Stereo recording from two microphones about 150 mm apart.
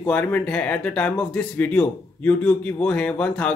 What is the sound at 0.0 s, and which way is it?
Speech, 10° left (ahead or behind).